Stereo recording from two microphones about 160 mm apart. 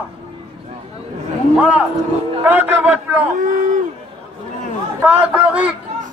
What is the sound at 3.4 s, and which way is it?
Speech, 55° right (ahead or behind).